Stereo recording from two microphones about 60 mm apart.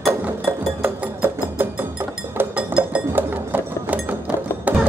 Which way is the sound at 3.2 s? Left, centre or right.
Right.